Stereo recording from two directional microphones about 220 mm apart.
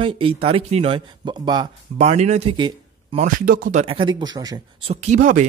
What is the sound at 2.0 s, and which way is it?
A man's voice, 30° right (ahead or behind).